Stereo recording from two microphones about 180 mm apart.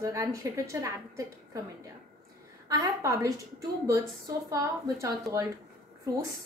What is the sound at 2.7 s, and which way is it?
A woman's voice, 20° right (ahead or behind).